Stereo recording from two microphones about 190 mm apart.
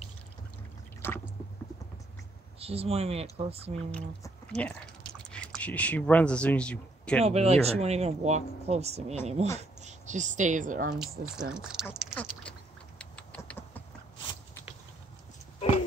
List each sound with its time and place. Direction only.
1.0 s squish: 10° left (ahead or behind)
2.6 s speech: 30° right (ahead or behind)
3.9 s speech: 5° left (ahead or behind)
7.2 s speech: 35° right (ahead or behind)
11.0 s speech: 5° right (ahead or behind)
12.1 s a sound: 5° left (ahead or behind)
13.0 s vehicle: 5° left (ahead or behind)